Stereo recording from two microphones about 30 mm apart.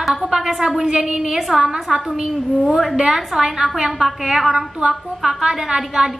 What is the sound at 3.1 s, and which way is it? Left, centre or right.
A woman's voice, centre.